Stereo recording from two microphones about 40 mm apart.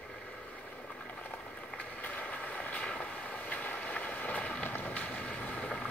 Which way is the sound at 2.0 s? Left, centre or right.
Left.